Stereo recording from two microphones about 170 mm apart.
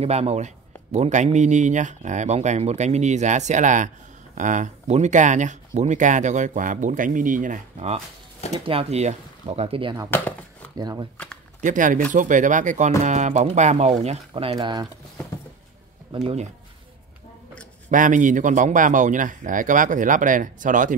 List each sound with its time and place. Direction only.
0.0 s speech: 40° right (ahead or behind)
10.1 s chopping: 10° left (ahead or behind)
10.8 s speech: 25° right (ahead or behind)
11.6 s speech: 50° right (ahead or behind); by 14.9 s 25° right (ahead or behind)
16.1 s speech: 25° right (ahead or behind)
17.8 s speech: 50° right (ahead or behind)